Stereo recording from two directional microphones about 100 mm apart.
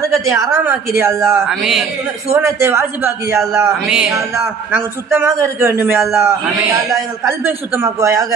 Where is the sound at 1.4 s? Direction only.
Centre (ahead or behind).